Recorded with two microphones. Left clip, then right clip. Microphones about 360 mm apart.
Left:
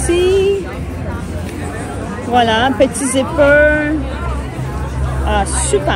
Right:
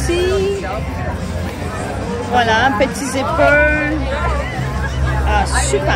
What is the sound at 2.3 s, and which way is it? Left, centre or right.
Speech, centre.